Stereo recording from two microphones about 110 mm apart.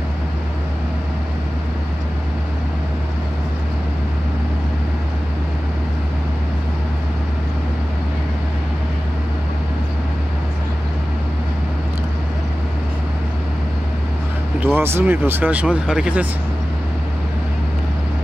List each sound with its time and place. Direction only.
14.6 s speech: 20° right (ahead or behind)